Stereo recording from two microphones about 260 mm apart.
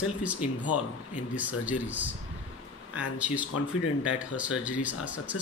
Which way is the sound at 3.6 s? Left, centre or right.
Left.